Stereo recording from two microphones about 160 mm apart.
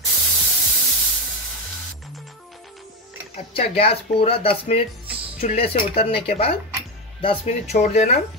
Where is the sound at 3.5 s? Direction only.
35° left (ahead or behind).